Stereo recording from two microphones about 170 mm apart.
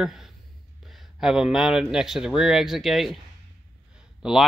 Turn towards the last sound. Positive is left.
turn(degrees=-5)  # may be behind; listen again after turning